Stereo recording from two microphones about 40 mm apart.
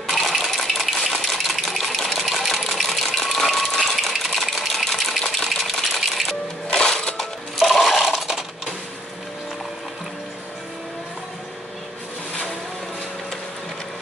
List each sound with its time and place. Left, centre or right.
0.1 s coin: centre
3.2 s a sound: centre
6.7 s music: centre
7.5 s coin: centre